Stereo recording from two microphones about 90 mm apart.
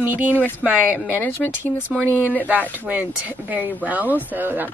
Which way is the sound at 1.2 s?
20° left (ahead or behind).